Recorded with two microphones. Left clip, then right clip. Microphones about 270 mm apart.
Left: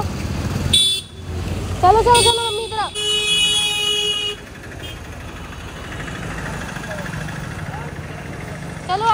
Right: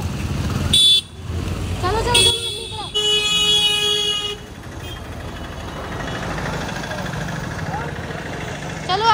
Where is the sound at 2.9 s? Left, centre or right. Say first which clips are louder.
Right 3 dB; right.